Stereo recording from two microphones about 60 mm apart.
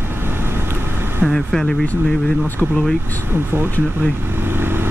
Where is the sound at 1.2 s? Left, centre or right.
Centre.